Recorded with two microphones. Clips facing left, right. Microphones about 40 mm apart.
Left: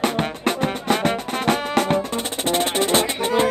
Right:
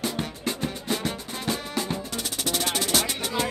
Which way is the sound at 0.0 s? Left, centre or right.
Left.